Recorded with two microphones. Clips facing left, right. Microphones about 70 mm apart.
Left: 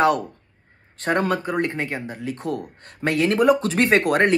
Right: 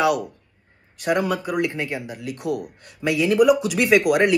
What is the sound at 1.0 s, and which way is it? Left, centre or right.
Speech, left.